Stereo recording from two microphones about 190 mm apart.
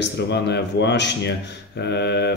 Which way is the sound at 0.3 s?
65° left (ahead or behind).